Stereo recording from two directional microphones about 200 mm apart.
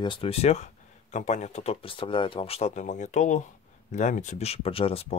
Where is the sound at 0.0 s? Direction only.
25° left (ahead or behind).